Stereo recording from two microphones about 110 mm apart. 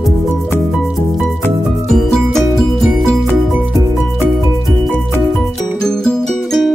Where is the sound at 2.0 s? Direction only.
5° left (ahead or behind).